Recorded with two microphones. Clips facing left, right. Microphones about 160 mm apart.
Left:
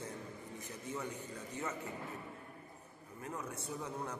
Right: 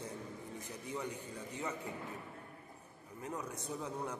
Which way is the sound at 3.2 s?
15° right (ahead or behind).